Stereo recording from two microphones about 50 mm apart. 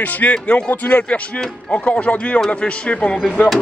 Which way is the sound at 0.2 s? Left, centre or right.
Left.